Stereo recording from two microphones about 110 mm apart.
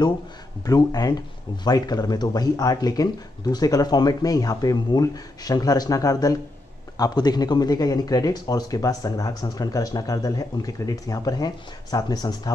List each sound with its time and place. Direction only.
0.7 s speech: 35° left (ahead or behind)